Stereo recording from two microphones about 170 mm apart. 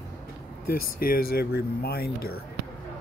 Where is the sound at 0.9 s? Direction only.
60° left (ahead or behind).